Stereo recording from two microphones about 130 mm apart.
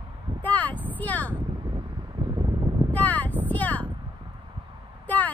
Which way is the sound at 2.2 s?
35° right (ahead or behind).